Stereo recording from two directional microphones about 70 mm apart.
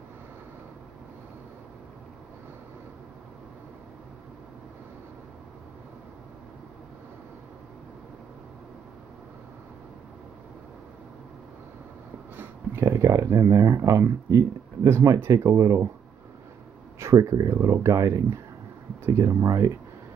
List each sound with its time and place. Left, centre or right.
12.4 s speech: right
17.0 s speech: right